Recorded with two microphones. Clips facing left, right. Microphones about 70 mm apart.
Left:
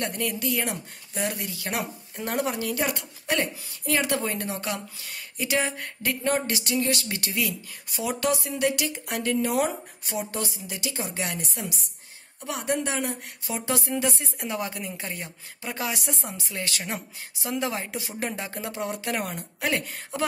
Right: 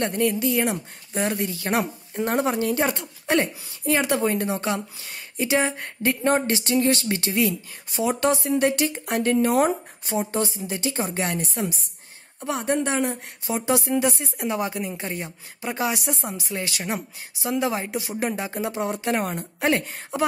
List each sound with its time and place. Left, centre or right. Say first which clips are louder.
0.0 s speech: right 6 dB; right
13.6 s speech: right 5 dB; centre; by 19.8 s right
20.1 s speech: right 4 dB; centre